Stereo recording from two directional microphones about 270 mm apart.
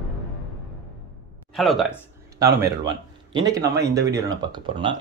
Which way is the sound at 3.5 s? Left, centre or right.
Centre.